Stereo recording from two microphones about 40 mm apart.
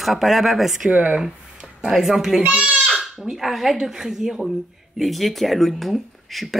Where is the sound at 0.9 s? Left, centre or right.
Right.